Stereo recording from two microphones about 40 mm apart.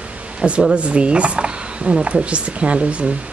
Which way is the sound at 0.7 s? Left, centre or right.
Right.